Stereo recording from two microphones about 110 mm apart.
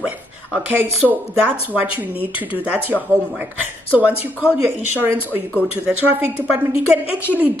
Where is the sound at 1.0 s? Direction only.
20° left (ahead or behind).